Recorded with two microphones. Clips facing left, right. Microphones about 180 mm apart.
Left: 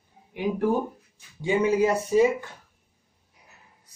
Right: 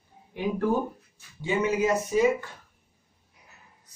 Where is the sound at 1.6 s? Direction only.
30° left (ahead or behind).